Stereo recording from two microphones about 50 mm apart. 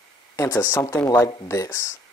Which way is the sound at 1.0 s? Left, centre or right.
Left.